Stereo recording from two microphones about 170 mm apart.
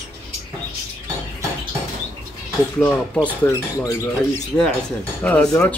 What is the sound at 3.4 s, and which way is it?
Speech, 15° left (ahead or behind).